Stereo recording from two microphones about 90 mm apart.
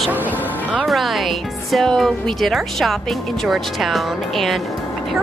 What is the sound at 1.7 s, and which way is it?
Speech, centre (ahead or behind).